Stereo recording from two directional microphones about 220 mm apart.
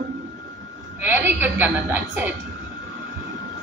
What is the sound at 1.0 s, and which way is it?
A woman's voice, 10° right (ahead or behind).